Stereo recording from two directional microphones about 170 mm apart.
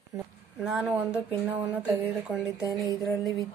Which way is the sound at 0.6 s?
5° right (ahead or behind).